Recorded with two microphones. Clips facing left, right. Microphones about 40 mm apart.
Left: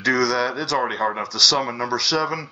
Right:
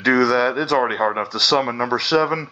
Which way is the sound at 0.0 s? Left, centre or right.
Right.